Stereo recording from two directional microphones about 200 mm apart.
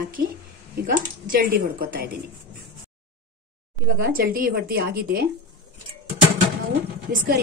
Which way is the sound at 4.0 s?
45° right (ahead or behind).